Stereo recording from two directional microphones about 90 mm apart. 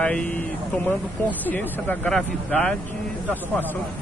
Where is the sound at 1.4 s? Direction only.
20° left (ahead or behind).